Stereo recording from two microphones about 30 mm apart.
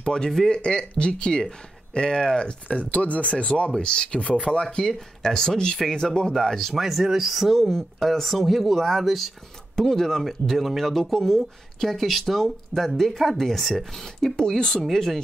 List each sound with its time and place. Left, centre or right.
0.0 s speech: left
3.7 s speech: left
4.4 s speech: centre
6.7 s speech: centre
9.8 s speech: centre